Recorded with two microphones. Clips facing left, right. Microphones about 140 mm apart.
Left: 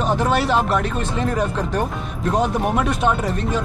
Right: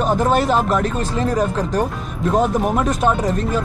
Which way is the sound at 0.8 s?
40° right (ahead or behind).